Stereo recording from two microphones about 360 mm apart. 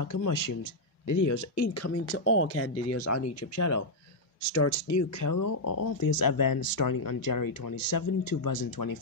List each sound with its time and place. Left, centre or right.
0.0 s speech: left